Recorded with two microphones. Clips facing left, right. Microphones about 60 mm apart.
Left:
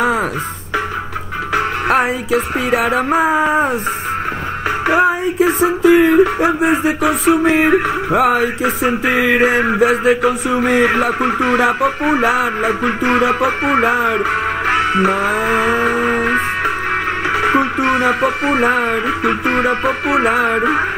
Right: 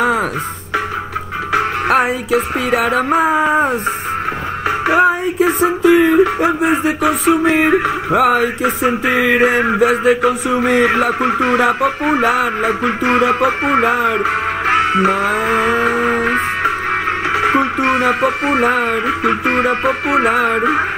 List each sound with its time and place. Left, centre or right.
0.0 s music: centre
1.9 s speech: centre
4.9 s speech: centre
14.2 s music: right
15.1 s vehicle: centre
17.3 s music: centre
18.6 s speech: centre
20.1 s speech: centre